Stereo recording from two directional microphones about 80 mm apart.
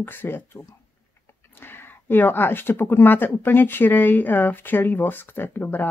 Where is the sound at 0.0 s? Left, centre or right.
Left.